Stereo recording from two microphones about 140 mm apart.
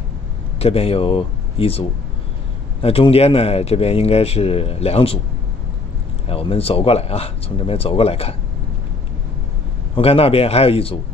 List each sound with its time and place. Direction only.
0.6 s a man's voice: 45° left (ahead or behind)
6.2 s a man's voice: 45° left (ahead or behind)
9.9 s a man's voice: 45° left (ahead or behind)